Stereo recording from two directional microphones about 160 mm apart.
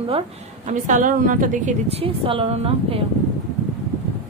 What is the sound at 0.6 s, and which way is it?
A woman's voice, 50° right (ahead or behind).